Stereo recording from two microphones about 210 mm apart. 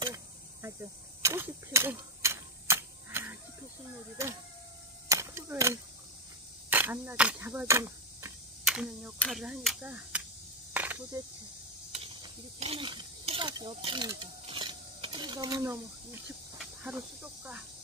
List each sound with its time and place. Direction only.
0.0 s a sound: 15° right (ahead or behind)
5.0 s a sound: 15° right (ahead or behind)
6.7 s speech: 10° right (ahead or behind)
10.7 s cricket: 10° right (ahead or behind)
11.9 s mechanisms: 30° right (ahead or behind)
16.5 s snake: 5° right (ahead or behind)